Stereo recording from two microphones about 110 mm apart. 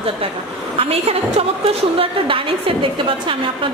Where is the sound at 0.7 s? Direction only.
65° right (ahead or behind).